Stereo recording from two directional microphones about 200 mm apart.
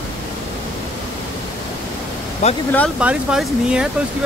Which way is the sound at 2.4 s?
35° left (ahead or behind).